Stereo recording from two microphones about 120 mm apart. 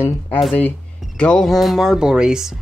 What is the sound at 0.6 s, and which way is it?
Speech, 10° left (ahead or behind).